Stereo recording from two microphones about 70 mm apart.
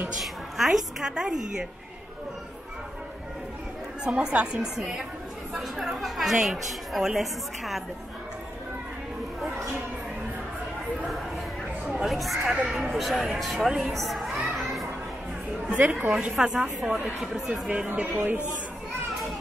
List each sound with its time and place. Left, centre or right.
0.2 s a woman's voice: centre
4.0 s a woman's voice: centre
11.8 s a woman's voice: centre
13.9 s a sound: centre
14.6 s children playing: centre
15.7 s a woman's voice: right